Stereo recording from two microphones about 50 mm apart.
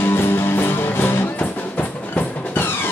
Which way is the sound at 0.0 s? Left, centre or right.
Left.